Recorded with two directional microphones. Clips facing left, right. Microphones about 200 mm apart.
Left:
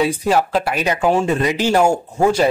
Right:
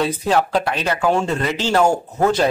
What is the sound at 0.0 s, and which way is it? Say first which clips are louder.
Speech: left 2 dB; 10° left (ahead or behind).